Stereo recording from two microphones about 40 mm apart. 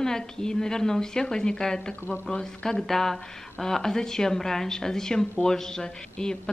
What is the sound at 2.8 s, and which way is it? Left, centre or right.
A woman's voice, centre.